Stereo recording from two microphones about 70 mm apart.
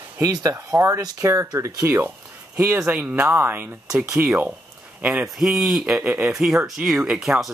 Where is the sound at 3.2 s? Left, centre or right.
Right.